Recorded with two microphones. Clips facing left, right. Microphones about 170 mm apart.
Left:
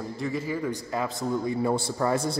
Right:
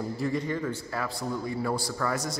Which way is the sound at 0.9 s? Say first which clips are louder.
Left 4 dB; 20° left (ahead or behind).